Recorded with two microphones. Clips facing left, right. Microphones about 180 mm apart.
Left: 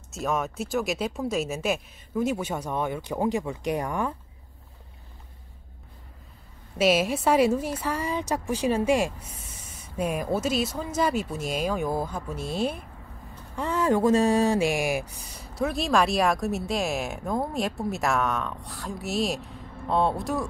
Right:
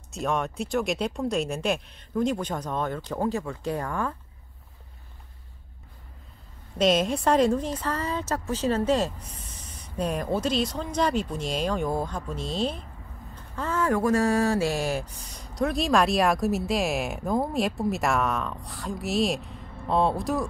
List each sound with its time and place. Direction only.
0.1 s a woman's voice: centre (ahead or behind)
6.8 s a woman's voice: 5° left (ahead or behind)